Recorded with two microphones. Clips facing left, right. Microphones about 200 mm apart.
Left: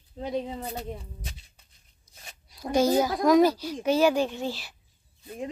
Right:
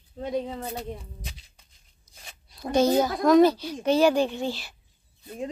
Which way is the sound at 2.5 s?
10° left (ahead or behind).